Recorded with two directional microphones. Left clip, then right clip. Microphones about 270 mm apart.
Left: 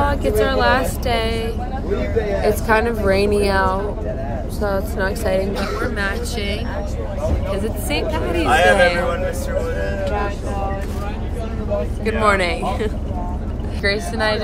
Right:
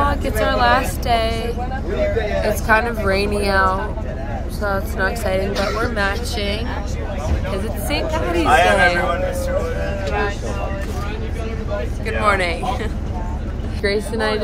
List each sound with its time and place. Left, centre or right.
0.0 s a woman's voice: centre
4.9 s a woman's voice: centre
12.1 s speech: centre
13.8 s a woman's voice: centre